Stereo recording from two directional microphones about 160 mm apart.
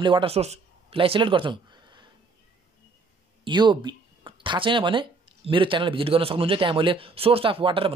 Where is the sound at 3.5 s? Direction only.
30° right (ahead or behind).